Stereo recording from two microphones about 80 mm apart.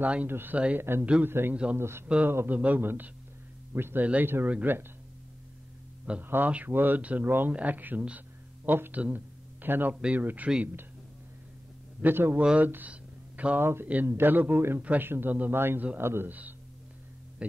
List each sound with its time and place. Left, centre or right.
0.0 s a man's voice: centre
6.2 s a man's voice: right
9.0 s a sound: right
9.9 s a man's voice: centre
12.0 s a man's voice: right
12.4 s speech: centre
13.6 s a man's voice: right; by 17.6 s centre